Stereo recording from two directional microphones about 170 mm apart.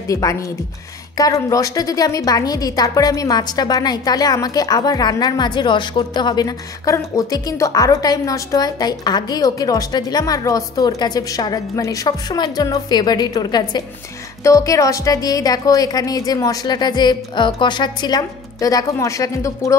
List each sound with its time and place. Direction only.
0.1 s a woman's voice: 20° left (ahead or behind)